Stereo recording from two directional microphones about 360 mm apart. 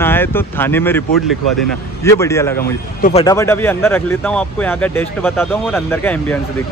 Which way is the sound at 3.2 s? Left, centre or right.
Centre.